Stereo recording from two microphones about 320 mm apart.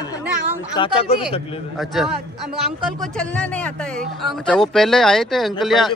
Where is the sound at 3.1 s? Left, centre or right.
Centre.